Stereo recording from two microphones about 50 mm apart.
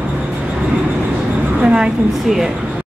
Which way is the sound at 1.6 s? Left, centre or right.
Centre.